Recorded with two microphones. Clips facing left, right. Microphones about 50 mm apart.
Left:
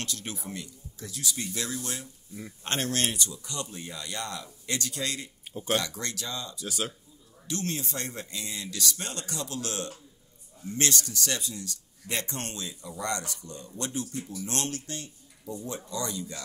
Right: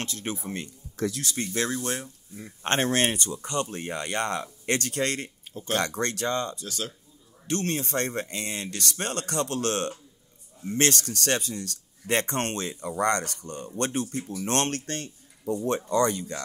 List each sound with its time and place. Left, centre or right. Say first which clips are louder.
0.0 s speech: right 4 dB; right
0.6 s a sound: right 5 dB; right
1.0 s speech: right 8 dB; right
1.3 s speech: right 6 dB; right
6.6 s speech: left 1 dB; centre
7.4 s speech: right 5 dB; right